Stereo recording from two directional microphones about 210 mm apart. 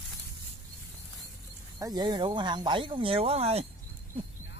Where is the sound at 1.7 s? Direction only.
20° right (ahead or behind).